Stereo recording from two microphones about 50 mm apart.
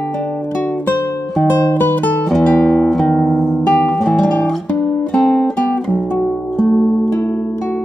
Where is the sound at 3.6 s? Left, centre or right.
Left.